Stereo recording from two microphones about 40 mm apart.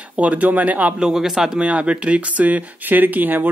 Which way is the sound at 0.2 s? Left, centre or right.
Right.